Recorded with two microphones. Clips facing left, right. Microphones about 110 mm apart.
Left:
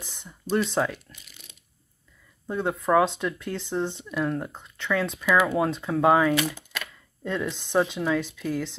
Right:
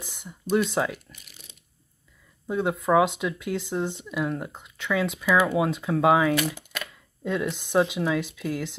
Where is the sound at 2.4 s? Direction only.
5° right (ahead or behind).